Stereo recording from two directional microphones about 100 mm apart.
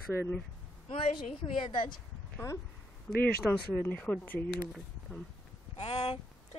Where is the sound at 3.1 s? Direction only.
15° left (ahead or behind).